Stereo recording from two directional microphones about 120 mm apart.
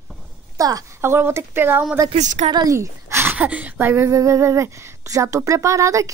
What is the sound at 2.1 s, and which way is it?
Speech, 75° right (ahead or behind).